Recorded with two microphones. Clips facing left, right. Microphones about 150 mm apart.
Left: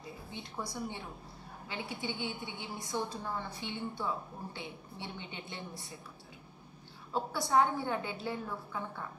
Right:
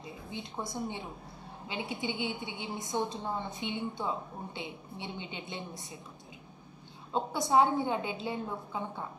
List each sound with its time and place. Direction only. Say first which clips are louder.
0.0 s a woman's voice: right 3 dB; 20° right (ahead or behind)
7.1 s a woman's voice: right 3 dB; 20° right (ahead or behind)